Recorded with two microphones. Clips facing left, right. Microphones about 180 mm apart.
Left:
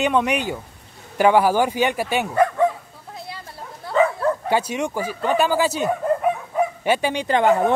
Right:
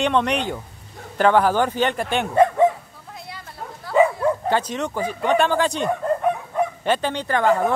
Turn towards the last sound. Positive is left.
turn(degrees=20)  # may be behind; listen again after turning